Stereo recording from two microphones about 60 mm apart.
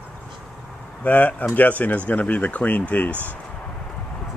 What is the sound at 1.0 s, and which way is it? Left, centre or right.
Speech, left.